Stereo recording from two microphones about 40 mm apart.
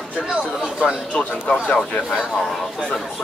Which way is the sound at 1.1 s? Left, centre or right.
Left.